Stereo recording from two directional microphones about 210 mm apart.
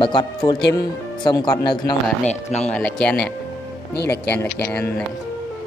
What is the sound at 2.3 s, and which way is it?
Speech, 30° left (ahead or behind).